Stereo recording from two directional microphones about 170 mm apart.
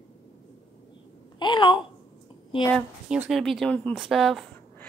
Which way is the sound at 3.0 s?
5° right (ahead or behind).